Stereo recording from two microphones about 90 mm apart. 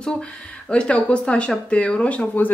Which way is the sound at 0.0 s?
10° left (ahead or behind).